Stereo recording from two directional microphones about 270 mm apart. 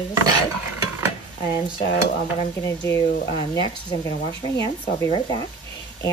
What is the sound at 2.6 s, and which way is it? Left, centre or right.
Speech, centre.